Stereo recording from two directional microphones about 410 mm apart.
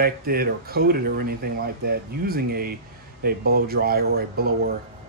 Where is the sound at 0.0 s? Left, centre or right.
Right.